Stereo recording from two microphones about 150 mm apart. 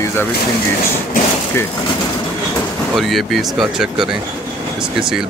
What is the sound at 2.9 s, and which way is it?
Speech, centre (ahead or behind).